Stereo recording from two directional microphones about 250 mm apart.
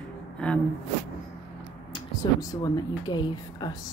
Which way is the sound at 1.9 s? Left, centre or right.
Centre.